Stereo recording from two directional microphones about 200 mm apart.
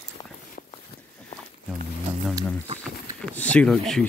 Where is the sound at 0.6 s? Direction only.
40° left (ahead or behind).